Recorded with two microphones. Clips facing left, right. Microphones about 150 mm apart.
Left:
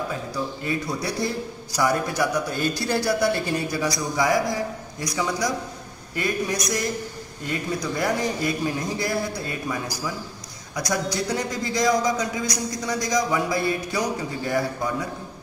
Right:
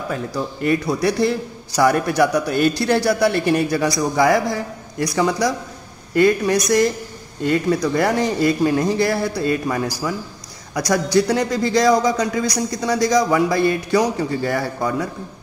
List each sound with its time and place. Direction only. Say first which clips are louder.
0.1 s a man's voice: right 4 dB; 70° right (ahead or behind)